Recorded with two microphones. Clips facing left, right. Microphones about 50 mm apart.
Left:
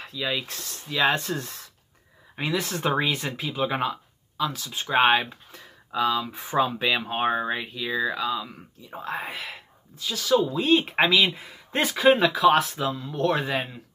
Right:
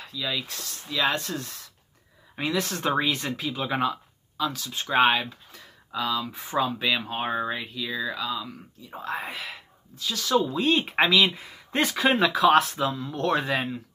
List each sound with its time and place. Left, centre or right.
0.0 s a sound: left
0.5 s speech: left
2.4 s speech: centre